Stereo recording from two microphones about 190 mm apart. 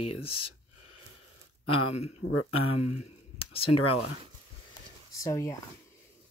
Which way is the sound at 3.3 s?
30° left (ahead or behind).